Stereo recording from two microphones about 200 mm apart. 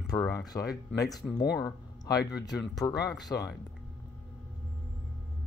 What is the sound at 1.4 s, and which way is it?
Speech, 20° left (ahead or behind).